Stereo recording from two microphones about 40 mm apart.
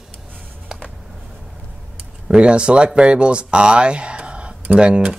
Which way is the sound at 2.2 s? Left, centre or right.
Right.